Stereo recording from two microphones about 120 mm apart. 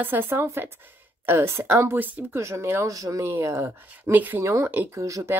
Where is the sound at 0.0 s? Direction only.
20° right (ahead or behind).